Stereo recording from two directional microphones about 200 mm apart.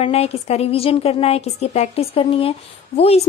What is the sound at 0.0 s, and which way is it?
A woman's voice, 30° left (ahead or behind).